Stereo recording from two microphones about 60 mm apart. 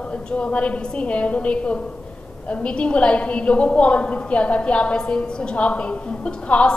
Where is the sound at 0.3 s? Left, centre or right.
Centre.